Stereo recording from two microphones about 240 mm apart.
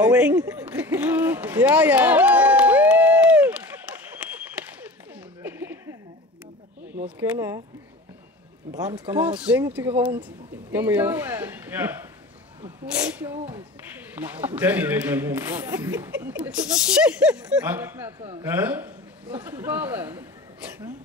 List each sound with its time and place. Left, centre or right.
0.0 s a sound: centre
7.2 s a man's voice: centre
8.7 s a man's voice: centre
9.2 s a man's voice: centre
13.5 s a man's voice: centre